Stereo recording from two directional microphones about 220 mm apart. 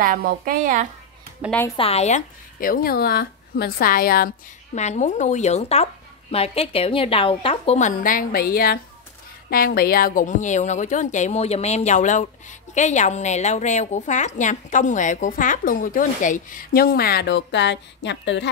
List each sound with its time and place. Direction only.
0.0 s a woman's voice: 40° right (ahead or behind)
1.8 s a woman's voice: 30° left (ahead or behind)
4.7 s a woman's voice: 30° left (ahead or behind); by 18.5 s 55° left (ahead or behind)